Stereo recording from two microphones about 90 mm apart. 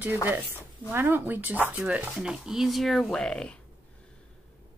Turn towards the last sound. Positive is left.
turn(degrees=10)  # may be behind; listen again after turning